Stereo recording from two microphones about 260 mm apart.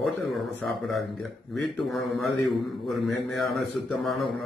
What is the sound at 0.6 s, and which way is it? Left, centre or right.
Mantra, centre.